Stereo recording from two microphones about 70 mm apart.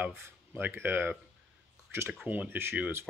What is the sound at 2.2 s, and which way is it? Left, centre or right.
Speech, right.